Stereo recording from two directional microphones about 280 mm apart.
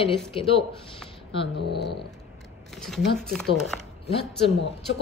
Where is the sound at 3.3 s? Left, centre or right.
Centre.